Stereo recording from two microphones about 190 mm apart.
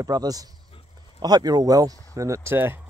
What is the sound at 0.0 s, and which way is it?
Speech, 20° right (ahead or behind).